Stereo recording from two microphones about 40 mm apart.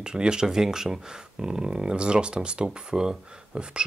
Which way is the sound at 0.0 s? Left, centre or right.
Right.